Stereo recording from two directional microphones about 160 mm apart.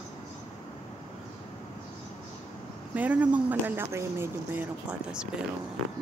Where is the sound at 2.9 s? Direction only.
10° right (ahead or behind).